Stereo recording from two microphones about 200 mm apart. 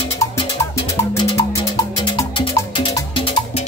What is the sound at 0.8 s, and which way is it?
Music, 15° left (ahead or behind).